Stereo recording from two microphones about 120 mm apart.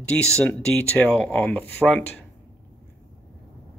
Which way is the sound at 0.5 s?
15° left (ahead or behind).